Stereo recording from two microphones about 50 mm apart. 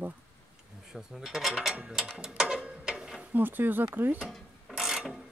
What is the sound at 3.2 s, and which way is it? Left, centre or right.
Speech, right.